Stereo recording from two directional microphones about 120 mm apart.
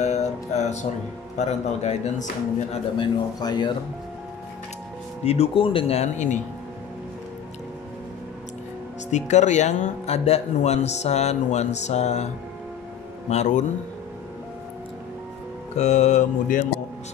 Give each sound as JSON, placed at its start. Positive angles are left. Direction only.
{"t": 0.0, "sound": "music", "side_deg": 70}
{"t": 1.4, "sound": "speech", "side_deg": 75}
{"t": 3.0, "sound": "a man's voice", "side_deg": 35}
{"t": 5.2, "sound": "speech", "side_deg": 60}
{"t": 9.1, "sound": "speech", "side_deg": 80}
{"t": 13.3, "sound": "speech", "side_deg": 80}
{"t": 15.8, "sound": "speech", "side_deg": 70}